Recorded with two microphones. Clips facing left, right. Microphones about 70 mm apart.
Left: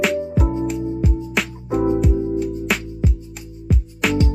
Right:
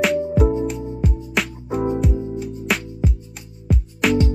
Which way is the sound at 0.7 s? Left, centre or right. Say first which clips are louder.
Left 3 dB; centre.